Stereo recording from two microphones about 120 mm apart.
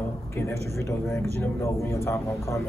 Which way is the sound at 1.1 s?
25° left (ahead or behind).